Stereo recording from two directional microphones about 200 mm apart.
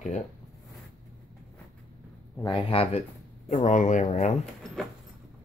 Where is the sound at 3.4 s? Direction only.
40° left (ahead or behind).